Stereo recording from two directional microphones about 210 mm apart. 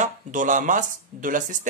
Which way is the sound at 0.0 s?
35° right (ahead or behind).